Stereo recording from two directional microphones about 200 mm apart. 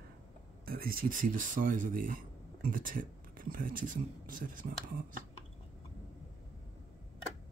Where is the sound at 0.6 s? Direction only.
45° right (ahead or behind).